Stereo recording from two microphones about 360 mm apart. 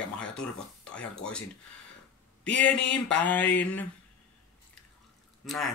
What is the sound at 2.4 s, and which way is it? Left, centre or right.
Speech, centre.